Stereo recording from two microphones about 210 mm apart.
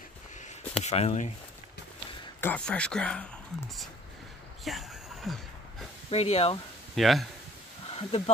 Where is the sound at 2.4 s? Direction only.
5° left (ahead or behind).